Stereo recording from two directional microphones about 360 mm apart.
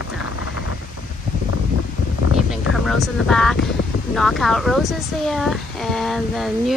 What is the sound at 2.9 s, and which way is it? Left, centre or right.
Speech, centre.